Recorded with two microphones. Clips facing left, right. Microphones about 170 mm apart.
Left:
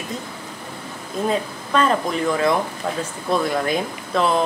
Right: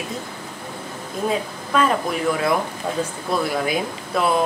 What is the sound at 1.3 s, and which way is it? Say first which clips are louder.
A woman's voice: left 1 dB; 5° right (ahead or behind).